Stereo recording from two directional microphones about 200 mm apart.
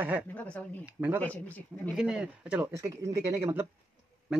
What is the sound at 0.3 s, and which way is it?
Speech, 5° left (ahead or behind).